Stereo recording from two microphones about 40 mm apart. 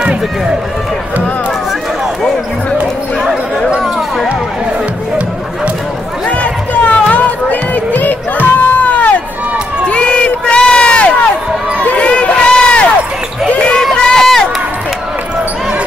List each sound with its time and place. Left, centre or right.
0.0 s speech: right
6.2 s music: left
9.8 s run: left
11.8 s a sound: left
14.0 s run: centre